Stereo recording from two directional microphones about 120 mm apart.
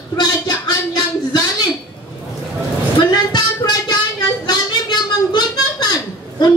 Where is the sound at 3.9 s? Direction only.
35° left (ahead or behind).